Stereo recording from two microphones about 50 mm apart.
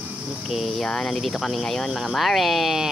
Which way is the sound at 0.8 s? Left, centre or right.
Centre.